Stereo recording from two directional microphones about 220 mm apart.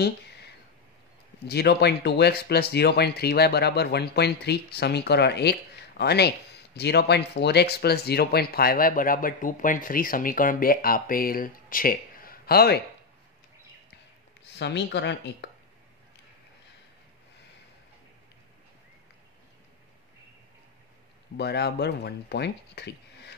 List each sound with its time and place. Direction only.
1.4 s speech: 50° left (ahead or behind)
14.6 s speech: 50° left (ahead or behind)
21.4 s speech: 50° left (ahead or behind)